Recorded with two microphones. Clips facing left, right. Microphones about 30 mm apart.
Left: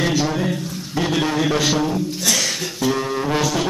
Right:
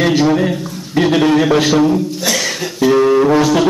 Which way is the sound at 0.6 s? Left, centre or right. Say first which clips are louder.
Right 3 dB; centre.